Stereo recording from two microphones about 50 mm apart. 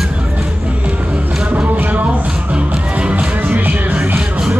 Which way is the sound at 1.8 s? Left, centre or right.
Right.